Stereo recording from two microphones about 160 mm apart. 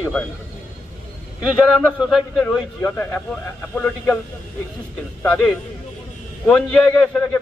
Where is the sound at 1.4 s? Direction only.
Centre (ahead or behind).